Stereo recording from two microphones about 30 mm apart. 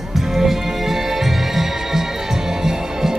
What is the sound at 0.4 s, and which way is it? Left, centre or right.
Music, centre.